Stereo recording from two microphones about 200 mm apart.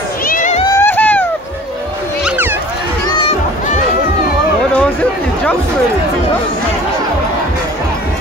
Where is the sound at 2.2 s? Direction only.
10° right (ahead or behind).